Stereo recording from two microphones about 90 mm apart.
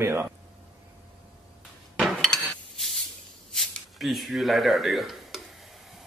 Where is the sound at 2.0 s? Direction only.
5° left (ahead or behind).